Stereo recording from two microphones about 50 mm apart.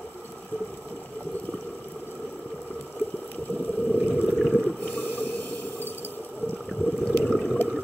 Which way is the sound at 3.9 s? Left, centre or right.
Left.